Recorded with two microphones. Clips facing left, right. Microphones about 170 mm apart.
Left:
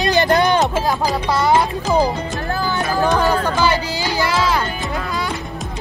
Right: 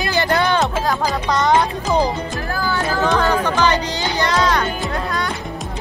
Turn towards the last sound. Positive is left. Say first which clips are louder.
# right 1 dB
turn(degrees=5)  # may be behind; listen again after turning